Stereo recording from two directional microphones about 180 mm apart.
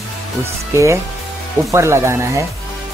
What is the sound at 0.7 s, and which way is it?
Speech, 15° right (ahead or behind).